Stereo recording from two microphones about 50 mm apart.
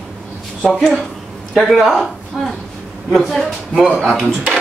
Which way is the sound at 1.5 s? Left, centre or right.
Centre.